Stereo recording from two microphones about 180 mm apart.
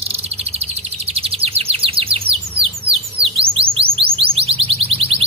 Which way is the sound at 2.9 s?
30° right (ahead or behind).